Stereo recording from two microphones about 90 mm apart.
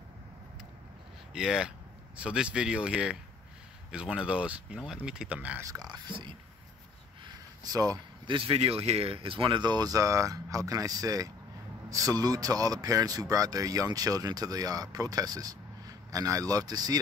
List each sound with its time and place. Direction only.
1.3 s speech: 5° right (ahead or behind)
5.9 s speech: 60° right (ahead or behind)
7.2 s a sound: 45° right (ahead or behind)
8.3 s speech: 85° right; by 17.0 s 45° right (ahead or behind)